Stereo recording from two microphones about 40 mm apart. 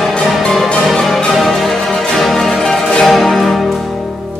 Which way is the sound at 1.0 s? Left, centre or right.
Centre.